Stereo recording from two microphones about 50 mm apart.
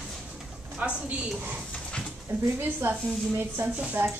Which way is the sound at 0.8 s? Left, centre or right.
Right.